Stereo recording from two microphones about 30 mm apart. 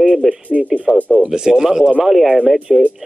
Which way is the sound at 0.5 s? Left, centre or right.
Right.